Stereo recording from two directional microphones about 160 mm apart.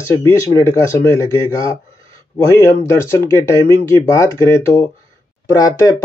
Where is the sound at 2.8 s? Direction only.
15° left (ahead or behind).